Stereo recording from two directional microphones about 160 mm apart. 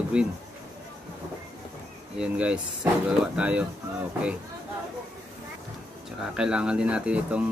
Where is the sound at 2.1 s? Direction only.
5° right (ahead or behind).